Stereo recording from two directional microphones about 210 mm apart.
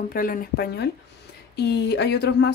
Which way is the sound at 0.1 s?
45° left (ahead or behind).